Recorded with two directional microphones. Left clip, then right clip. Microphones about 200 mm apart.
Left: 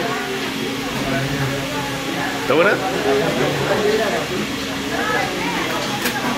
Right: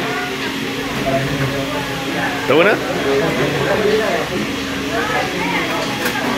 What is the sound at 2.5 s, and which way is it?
Speech, 10° right (ahead or behind).